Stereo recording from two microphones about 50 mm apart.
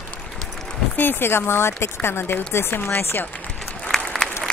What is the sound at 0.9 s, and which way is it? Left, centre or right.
Speech, left.